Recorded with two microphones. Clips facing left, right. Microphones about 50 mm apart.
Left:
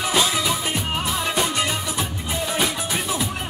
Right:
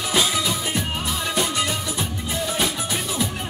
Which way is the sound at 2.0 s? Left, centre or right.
Centre.